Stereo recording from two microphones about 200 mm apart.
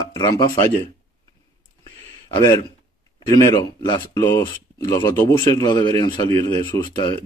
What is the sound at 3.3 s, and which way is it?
Speech, 20° left (ahead or behind).